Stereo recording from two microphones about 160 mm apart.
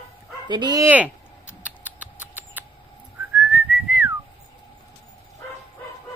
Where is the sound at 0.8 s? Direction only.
10° right (ahead or behind).